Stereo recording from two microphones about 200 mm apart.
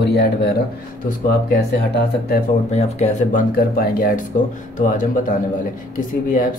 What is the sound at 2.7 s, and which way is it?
Speech, 35° left (ahead or behind).